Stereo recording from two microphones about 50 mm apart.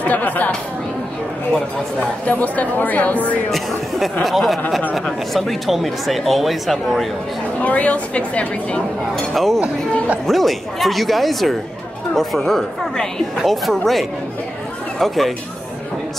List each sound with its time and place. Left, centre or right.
0.0 s speech: left
2.0 s speech: left
3.4 s speech: centre
7.6 s a woman's voice: left
9.1 s speech: centre